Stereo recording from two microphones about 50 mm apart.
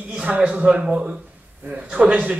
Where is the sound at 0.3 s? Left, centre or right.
Right.